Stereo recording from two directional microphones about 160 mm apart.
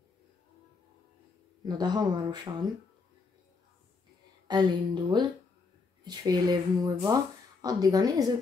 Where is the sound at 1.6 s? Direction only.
25° right (ahead or behind).